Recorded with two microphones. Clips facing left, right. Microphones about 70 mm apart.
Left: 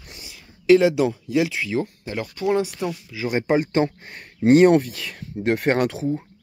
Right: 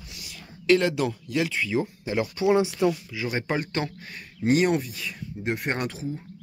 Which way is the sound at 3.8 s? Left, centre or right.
Left.